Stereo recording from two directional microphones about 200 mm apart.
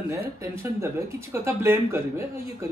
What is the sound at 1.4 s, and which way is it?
Speech, 10° right (ahead or behind).